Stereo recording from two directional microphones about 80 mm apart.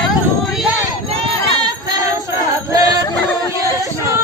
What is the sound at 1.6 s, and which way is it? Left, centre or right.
Child singing, right.